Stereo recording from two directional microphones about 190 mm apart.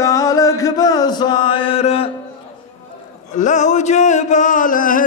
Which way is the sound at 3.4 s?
40° left (ahead or behind).